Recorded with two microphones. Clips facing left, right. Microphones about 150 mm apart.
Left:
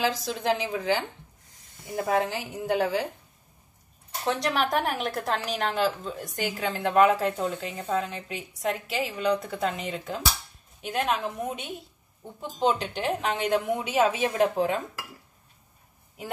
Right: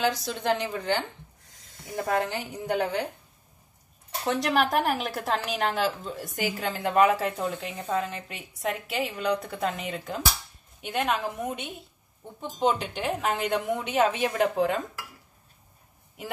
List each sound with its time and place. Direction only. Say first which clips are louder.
0.0 s a woman's voice: even; centre (ahead or behind)
4.3 s a woman's voice: right 1 dB; centre (ahead or behind)